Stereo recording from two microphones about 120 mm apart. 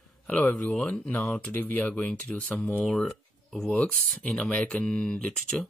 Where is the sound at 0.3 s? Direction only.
10° left (ahead or behind).